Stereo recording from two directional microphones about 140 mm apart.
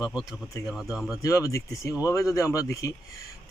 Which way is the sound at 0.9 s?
5° right (ahead or behind).